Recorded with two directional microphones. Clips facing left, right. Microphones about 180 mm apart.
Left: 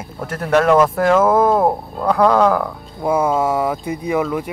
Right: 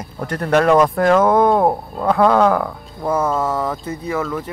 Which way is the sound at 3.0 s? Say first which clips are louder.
Left 2 dB; 10° left (ahead or behind).